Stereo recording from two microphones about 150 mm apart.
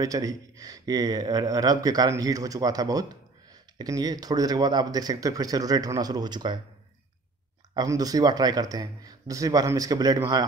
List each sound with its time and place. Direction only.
0.0 s speech: 25° right (ahead or behind)
7.7 s speech: 25° right (ahead or behind)